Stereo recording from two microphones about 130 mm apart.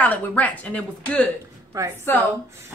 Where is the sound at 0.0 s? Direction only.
10° left (ahead or behind).